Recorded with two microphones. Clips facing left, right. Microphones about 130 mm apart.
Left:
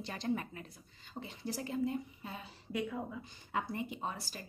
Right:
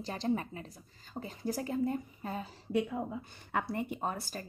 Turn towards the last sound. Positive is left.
turn(degrees=-50)  # may be behind; listen again after turning